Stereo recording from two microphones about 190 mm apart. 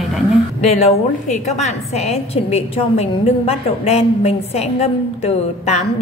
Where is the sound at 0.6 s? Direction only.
35° left (ahead or behind).